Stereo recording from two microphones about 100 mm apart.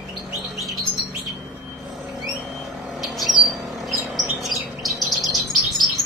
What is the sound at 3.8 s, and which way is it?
Chirp, centre (ahead or behind).